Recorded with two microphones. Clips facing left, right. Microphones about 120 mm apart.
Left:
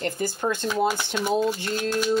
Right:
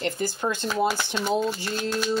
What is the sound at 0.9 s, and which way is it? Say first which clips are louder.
Speech: left 1 dB; 15° left (ahead or behind).